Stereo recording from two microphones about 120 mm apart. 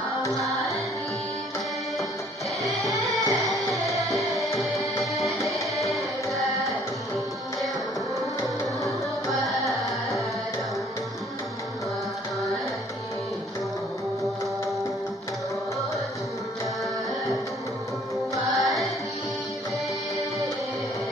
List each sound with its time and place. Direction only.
2.6 s music: centre (ahead or behind)
5.8 s music: centre (ahead or behind)
9.3 s music: centre (ahead or behind)
18.6 s music: centre (ahead or behind)